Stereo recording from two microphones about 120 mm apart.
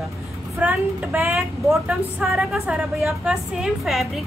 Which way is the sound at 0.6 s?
15° right (ahead or behind).